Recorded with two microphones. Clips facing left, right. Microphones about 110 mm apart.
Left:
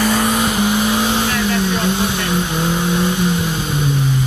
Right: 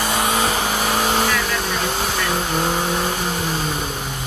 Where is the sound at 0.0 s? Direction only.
20° right (ahead or behind); by 1.3 s 40° right (ahead or behind).